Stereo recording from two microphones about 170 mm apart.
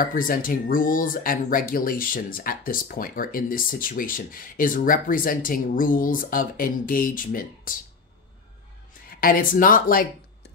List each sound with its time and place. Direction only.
0.0 s speech: 55° left (ahead or behind)
9.1 s speech: 60° left (ahead or behind)